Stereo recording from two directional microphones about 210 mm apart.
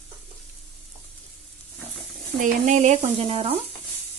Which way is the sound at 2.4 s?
35° right (ahead or behind).